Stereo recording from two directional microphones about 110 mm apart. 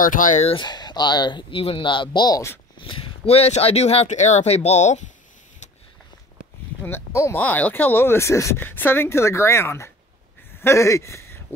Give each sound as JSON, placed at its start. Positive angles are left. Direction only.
{"t": 0.6, "sound": "speech", "side_deg": 40}
{"t": 2.8, "sound": "speech", "side_deg": 55}
{"t": 6.8, "sound": "speech", "side_deg": 25}
{"t": 7.3, "sound": "speech", "side_deg": 15}